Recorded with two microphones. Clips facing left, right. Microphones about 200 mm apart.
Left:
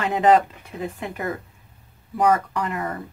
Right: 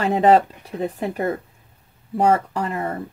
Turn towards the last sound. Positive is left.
turn(degrees=-25)  # may be behind; listen again after turning